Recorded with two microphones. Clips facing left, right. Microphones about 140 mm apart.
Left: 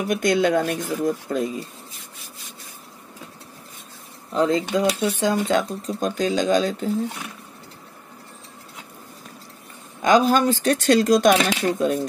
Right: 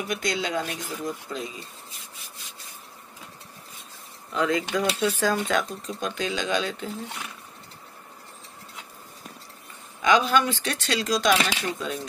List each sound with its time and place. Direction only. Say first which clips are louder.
0.1 s speech: left 10 dB; 55° left (ahead or behind)
4.3 s speech: left 5 dB; 35° left (ahead or behind)
4.6 s speech: left 4 dB; 20° left (ahead or behind)
5.9 s speech: left 7 dB; 40° left (ahead or behind)
10.0 s speech: left 4 dB; 40° left (ahead or behind)